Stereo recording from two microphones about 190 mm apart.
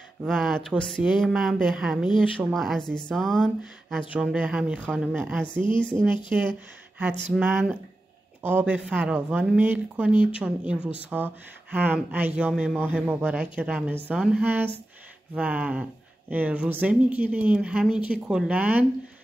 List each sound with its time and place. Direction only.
0.2 s speech: centre (ahead or behind)
5.1 s speech: 10° right (ahead or behind)
5.6 s speech: 25° left (ahead or behind)
6.3 s speech: 5° right (ahead or behind)